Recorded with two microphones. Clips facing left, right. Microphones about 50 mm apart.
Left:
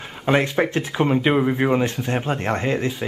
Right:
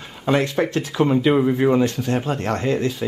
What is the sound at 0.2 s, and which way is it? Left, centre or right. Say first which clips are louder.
Speech: even; left.